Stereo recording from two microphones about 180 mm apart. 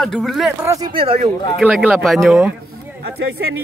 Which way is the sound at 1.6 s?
5° right (ahead or behind).